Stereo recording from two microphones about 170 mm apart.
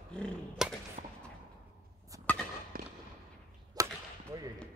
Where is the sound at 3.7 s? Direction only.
15° right (ahead or behind).